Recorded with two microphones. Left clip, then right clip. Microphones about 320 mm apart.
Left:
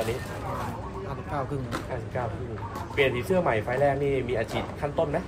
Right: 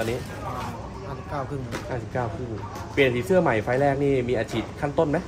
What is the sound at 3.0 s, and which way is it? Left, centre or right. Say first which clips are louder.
Speech: right 4 dB; right.